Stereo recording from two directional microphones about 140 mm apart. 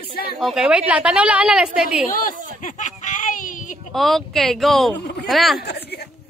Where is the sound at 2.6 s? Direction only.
65° left (ahead or behind).